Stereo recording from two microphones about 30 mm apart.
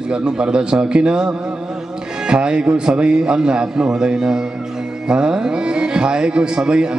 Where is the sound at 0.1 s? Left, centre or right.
Right.